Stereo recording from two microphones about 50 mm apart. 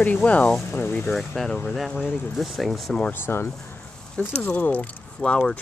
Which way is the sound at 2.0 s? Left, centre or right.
Left.